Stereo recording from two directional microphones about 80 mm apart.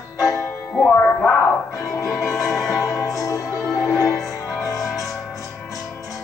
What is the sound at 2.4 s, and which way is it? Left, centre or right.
Music, centre.